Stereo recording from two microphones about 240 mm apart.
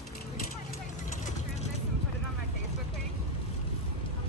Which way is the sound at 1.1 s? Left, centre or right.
Left.